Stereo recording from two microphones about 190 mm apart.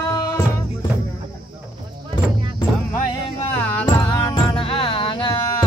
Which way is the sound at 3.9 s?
20° left (ahead or behind).